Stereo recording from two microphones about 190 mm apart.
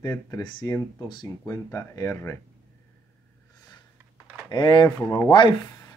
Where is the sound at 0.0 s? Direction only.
20° left (ahead or behind).